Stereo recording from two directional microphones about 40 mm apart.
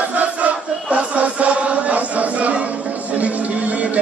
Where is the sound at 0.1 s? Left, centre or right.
Right.